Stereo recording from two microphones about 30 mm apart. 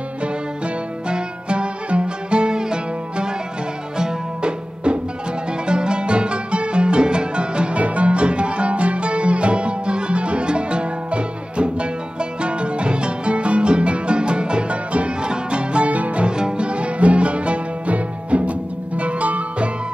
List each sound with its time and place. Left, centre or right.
1.0 s music: right
7.7 s music: right
15.9 s music: right
16.3 s music: right